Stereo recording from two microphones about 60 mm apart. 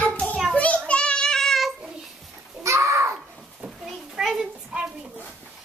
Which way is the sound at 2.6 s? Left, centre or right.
Right.